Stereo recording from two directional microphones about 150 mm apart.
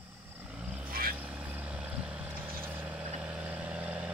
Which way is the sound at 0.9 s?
75° right (ahead or behind).